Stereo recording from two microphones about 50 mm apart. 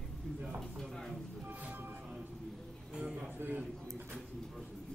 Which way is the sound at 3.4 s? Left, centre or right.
Right.